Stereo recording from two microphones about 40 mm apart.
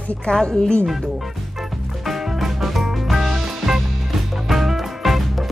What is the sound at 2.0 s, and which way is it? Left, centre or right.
Music, centre.